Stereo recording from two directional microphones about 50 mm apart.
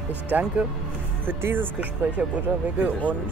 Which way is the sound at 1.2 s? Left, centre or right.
Right.